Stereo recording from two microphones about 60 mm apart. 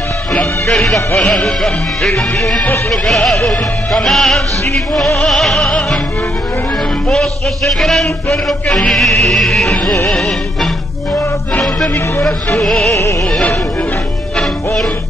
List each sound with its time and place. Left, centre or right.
0.7 s music: centre
5.6 s music: centre
7.1 s a man's voice: centre
8.5 s music: centre
12.5 s music: centre
12.9 s music: left
14.3 s music: centre